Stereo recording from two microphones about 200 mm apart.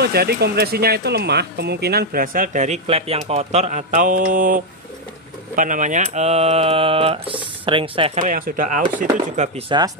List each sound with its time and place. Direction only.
0.0 s speech: 55° right (ahead or behind)
5.6 s mantra: 40° right (ahead or behind)
8.2 s mantra: 45° right (ahead or behind)